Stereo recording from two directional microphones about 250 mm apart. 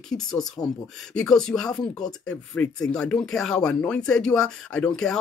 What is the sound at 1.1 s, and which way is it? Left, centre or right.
Speech, centre.